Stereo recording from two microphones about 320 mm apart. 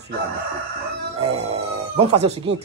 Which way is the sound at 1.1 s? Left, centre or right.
Centre.